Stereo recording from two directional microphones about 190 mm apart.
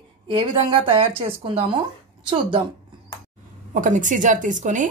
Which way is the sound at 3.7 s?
40° right (ahead or behind).